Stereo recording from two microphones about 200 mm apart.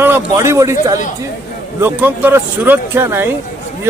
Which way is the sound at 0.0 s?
10° right (ahead or behind).